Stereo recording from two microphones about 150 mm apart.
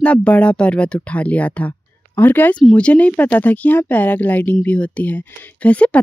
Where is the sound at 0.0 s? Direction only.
10° left (ahead or behind).